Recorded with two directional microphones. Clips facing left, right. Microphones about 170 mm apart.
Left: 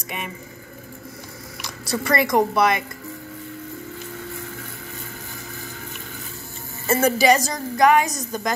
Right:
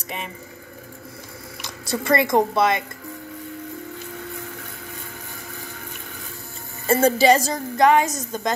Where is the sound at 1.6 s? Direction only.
25° right (ahead or behind).